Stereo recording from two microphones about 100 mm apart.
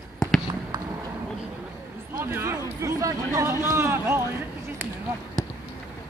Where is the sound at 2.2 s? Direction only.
25° right (ahead or behind).